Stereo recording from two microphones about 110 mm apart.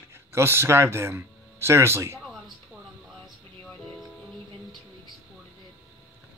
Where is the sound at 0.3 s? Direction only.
25° right (ahead or behind).